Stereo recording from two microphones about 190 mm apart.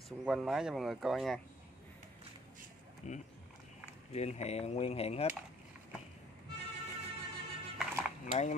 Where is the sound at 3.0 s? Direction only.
40° left (ahead or behind).